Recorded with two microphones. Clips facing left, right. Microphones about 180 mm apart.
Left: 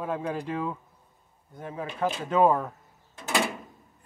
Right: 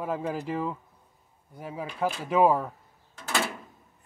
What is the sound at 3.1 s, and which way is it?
Door, 15° left (ahead or behind).